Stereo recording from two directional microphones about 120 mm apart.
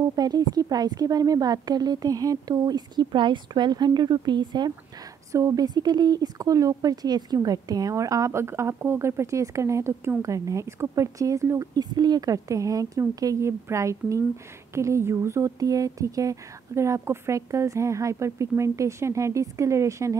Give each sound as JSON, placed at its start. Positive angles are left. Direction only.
{"t": 0.1, "sound": "a woman's voice", "side_deg": -35}